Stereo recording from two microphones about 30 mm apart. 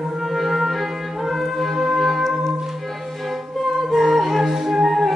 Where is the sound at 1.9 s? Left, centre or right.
Centre.